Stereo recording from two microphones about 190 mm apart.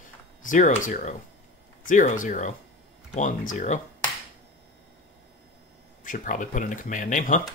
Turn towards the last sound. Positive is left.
turn(degrees=45)  # may be behind; listen again after turning